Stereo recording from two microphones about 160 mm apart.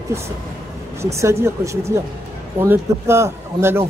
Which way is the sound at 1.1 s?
15° right (ahead or behind).